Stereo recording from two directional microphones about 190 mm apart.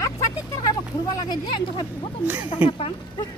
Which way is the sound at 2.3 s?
10° right (ahead or behind).